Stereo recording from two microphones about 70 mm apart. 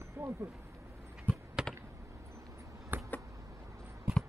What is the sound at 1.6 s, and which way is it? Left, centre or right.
Computer keyboard, centre.